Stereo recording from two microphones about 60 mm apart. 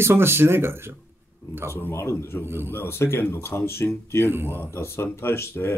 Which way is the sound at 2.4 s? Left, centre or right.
Right.